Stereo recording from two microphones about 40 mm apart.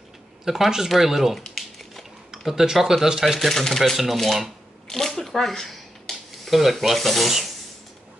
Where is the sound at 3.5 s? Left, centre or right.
Centre.